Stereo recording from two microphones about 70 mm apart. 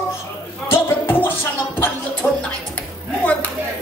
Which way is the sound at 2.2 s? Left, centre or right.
Centre.